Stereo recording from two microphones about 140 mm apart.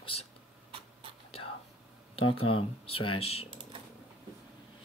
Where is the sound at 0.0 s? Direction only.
45° left (ahead or behind).